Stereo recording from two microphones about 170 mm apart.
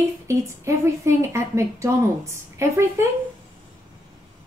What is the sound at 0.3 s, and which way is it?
Speech, 15° right (ahead or behind).